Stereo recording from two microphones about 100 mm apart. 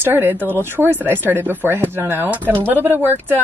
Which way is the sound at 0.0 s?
20° right (ahead or behind).